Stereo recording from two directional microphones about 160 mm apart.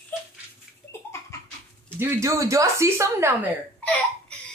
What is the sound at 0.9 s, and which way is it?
Laughter, 15° left (ahead or behind).